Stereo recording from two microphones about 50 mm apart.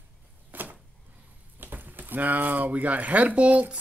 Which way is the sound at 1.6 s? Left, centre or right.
Right.